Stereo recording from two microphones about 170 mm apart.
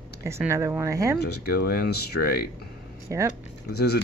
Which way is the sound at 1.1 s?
70° left (ahead or behind).